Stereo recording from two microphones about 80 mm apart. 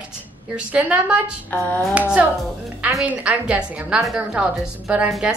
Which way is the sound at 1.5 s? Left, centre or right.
Left.